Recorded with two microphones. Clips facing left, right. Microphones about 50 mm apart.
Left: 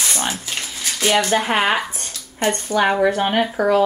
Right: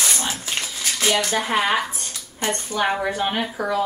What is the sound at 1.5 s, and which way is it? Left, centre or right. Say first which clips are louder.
Speech: left 2 dB; left.